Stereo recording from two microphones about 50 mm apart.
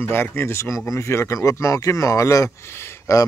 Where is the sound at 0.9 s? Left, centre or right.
Left.